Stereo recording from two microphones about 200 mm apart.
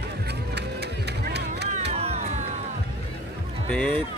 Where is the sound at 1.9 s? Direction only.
30° right (ahead or behind).